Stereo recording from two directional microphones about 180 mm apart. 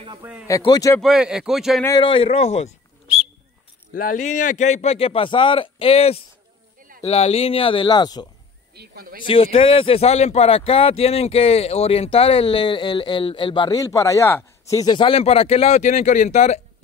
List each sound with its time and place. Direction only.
0.2 s speech: 5° right (ahead or behind)
0.5 s speech: 20° left (ahead or behind)
1.0 s speech: 5° right (ahead or behind)
2.0 s speech: 30° left (ahead or behind)
3.9 s speech: 45° left (ahead or behind); by 8.3 s 25° left (ahead or behind)
8.7 s speech: 55° right (ahead or behind)
9.2 s speech: 30° left (ahead or behind)